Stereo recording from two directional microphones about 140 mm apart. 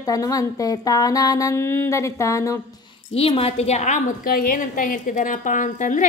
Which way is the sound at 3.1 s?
45° left (ahead or behind).